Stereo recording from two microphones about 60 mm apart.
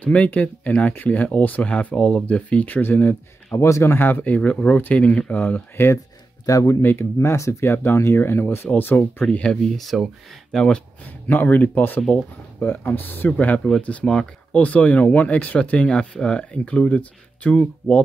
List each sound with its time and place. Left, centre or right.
0.0 s speech: left
3.5 s speech: left
4.0 s speech: left
5.8 s speech: left
6.4 s speech: left
6.8 s speech: left
9.2 s speech: centre
9.8 s speech: centre
10.5 s speech: centre
11.2 s speech: left
13.7 s speech: centre